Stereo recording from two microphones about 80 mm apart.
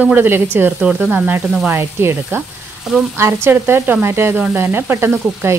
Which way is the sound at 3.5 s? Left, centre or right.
Right.